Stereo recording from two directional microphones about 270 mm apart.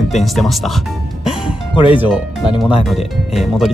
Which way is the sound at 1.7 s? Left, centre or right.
Centre.